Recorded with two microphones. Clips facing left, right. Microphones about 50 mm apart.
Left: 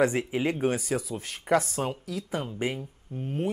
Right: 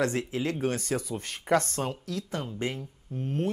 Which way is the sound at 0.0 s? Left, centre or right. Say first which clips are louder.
Left 3 dB; centre.